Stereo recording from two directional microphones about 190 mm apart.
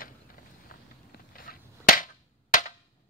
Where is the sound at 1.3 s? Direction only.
50° left (ahead or behind).